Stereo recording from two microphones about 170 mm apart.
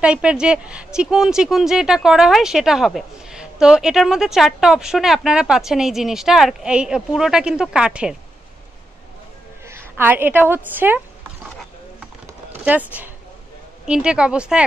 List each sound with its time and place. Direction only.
0.0 s a woman's voice: 5° right (ahead or behind)
9.7 s a woman's voice: 15° right (ahead or behind)
12.6 s a woman's voice: 10° right (ahead or behind)